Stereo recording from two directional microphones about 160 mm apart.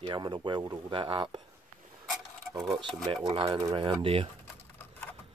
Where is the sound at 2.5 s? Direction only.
25° right (ahead or behind).